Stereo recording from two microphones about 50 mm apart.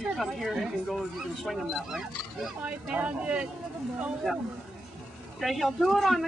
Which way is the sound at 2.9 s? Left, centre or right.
Right.